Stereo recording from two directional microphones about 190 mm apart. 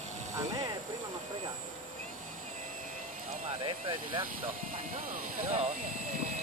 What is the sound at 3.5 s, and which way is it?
Speech, 25° right (ahead or behind).